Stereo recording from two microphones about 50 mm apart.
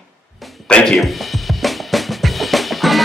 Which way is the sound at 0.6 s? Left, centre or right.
Centre.